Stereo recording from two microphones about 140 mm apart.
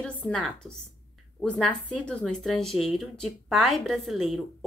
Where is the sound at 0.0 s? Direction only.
5° left (ahead or behind).